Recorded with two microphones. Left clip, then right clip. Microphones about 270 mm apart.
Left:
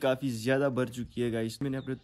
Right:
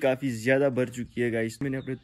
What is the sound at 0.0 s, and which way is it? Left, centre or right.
Speech, centre.